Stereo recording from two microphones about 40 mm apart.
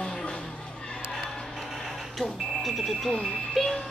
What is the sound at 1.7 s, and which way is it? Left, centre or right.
Smoke detector, centre.